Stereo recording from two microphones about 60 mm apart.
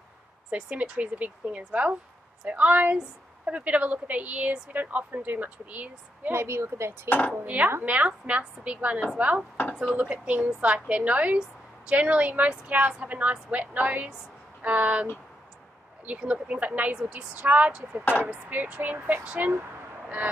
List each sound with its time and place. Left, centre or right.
0.5 s a woman's voice: right
6.3 s speech: right
7.1 s speech: left
7.4 s a woman's voice: right
9.6 s speech: left
10.1 s a woman's voice: right
16.1 s a woman's voice: centre